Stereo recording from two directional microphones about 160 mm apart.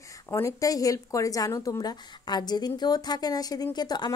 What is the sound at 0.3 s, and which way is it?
Speech, 20° left (ahead or behind).